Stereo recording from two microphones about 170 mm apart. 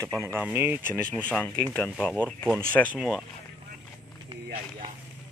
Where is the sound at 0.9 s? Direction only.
10° left (ahead or behind).